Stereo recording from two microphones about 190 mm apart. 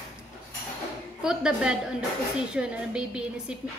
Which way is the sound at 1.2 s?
5° right (ahead or behind).